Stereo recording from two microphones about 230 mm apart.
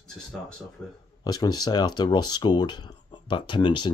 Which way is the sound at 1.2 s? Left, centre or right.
Centre.